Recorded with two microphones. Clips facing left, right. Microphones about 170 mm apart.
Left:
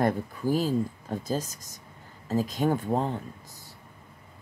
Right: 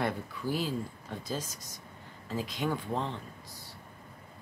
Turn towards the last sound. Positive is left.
turn(degrees=45)  # may be behind; listen again after turning